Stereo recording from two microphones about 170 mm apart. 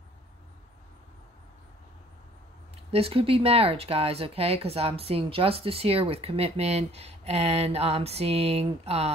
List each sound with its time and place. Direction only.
2.9 s speech: 35° right (ahead or behind)